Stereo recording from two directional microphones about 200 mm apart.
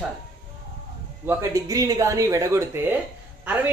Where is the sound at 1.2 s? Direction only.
15° right (ahead or behind).